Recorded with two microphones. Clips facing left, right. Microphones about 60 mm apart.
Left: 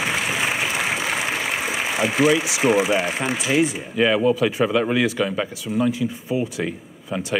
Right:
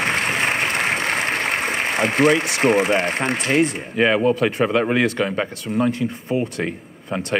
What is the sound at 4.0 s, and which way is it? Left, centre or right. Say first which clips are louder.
Speech: right 1 dB; centre.